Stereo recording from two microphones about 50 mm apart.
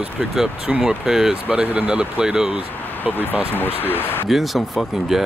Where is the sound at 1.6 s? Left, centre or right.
Right.